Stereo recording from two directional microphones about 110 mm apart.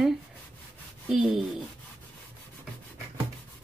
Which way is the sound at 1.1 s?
10° right (ahead or behind).